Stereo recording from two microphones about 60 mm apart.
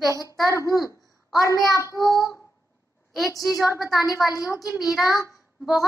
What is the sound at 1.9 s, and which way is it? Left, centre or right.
Child singing, left.